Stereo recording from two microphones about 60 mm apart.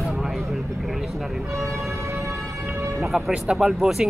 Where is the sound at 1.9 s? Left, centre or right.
Right.